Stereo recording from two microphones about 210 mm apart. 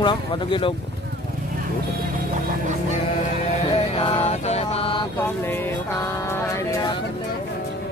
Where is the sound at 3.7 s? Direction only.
30° left (ahead or behind).